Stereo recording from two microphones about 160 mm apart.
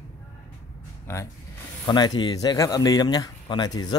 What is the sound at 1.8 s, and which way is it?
Speech, 25° left (ahead or behind).